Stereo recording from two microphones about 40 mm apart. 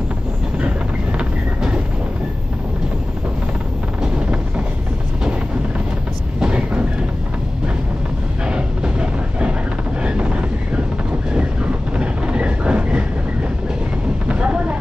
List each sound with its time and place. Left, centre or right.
6.4 s train: right
8.5 s vehicle: right
10.0 s wind noise: right
12.0 s vehicle: right
14.2 s vehicle: right